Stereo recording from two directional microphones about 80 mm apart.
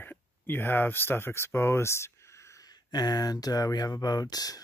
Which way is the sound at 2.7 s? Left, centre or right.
Left.